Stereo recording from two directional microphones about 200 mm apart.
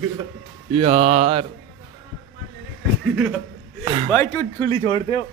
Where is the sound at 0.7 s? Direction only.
30° right (ahead or behind).